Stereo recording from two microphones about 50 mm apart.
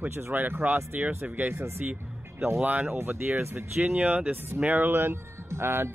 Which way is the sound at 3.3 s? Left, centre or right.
Right.